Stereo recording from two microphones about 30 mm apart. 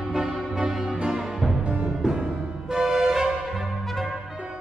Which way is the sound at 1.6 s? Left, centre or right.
Right.